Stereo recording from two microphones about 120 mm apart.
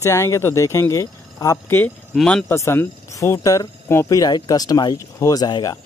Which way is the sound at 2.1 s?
10° left (ahead or behind).